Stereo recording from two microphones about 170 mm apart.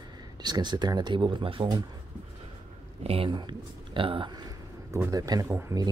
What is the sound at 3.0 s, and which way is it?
Speech, 35° right (ahead or behind).